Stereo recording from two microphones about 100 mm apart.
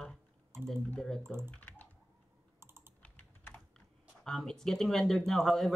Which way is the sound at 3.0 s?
20° left (ahead or behind).